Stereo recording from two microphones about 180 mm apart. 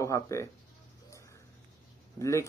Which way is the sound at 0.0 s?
15° left (ahead or behind).